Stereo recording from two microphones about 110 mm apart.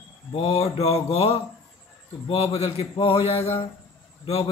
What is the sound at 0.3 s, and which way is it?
Speech, 60° left (ahead or behind).